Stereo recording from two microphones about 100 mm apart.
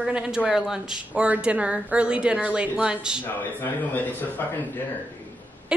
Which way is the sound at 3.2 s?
20° left (ahead or behind).